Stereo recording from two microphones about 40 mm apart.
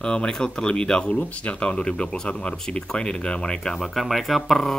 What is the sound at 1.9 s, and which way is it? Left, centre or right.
Speech, left.